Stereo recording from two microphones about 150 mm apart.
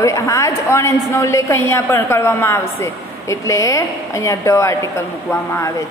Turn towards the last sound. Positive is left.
turn(degrees=20)  # may be behind; listen again after turning